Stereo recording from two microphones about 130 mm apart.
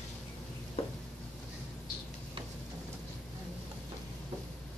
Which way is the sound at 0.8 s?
50° left (ahead or behind).